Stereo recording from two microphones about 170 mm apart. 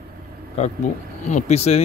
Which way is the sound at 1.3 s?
40° left (ahead or behind).